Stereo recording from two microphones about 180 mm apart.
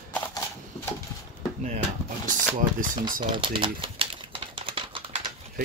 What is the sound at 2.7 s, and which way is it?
Speech, 50° right (ahead or behind).